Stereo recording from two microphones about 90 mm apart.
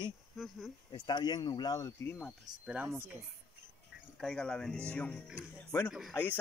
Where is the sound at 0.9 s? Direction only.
55° left (ahead or behind).